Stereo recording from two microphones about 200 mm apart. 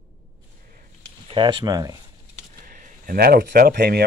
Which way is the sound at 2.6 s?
45° right (ahead or behind).